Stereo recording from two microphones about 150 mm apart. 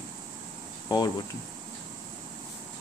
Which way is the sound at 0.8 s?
25° left (ahead or behind).